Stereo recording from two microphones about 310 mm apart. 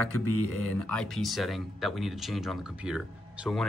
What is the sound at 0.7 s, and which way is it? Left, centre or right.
Speech, centre.